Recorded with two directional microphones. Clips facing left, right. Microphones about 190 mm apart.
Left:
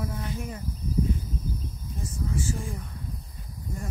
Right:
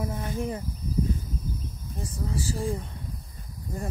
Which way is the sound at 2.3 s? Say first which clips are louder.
Right 4 dB; 35° right (ahead or behind).